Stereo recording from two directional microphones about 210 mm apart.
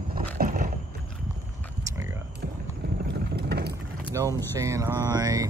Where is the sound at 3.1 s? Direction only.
50° right (ahead or behind).